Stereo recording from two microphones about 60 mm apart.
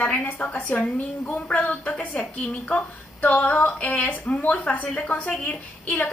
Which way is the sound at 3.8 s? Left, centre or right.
Left.